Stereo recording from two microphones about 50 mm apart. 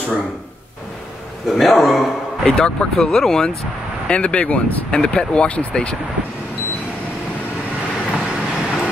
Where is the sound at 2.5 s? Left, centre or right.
Centre.